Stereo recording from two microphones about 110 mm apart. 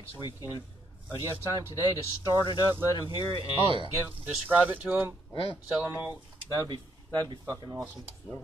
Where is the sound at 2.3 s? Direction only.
40° left (ahead or behind).